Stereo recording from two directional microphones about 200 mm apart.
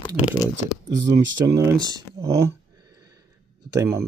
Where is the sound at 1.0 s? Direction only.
20° right (ahead or behind).